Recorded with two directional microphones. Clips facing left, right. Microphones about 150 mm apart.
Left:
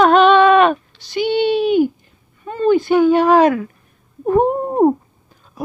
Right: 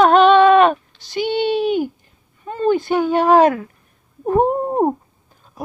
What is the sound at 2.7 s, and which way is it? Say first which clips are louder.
Female singing: left 9 dB; 40° right (ahead or behind).